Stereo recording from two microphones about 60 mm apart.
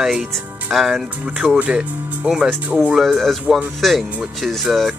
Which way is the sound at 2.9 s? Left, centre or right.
Centre.